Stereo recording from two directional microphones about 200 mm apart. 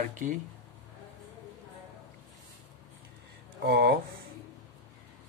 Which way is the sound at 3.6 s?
55° right (ahead or behind).